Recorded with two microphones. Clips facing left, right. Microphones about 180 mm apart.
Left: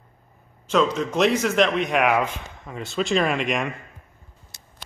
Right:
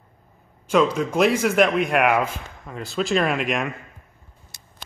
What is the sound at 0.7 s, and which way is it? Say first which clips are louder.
Speech: right 2 dB; 10° right (ahead or behind).